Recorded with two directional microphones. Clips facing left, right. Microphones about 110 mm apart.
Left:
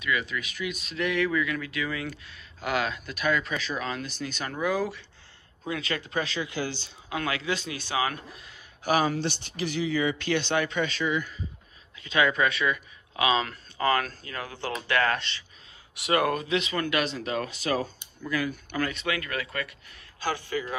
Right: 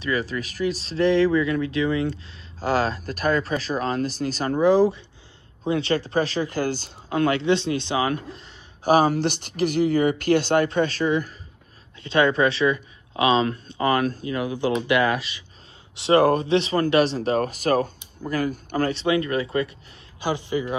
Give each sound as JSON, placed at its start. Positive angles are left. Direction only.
{"t": 0.0, "sound": "speech", "side_deg": -35}
{"t": 7.2, "sound": "a man's voice", "side_deg": -30}
{"t": 15.9, "sound": "a man's voice", "side_deg": -30}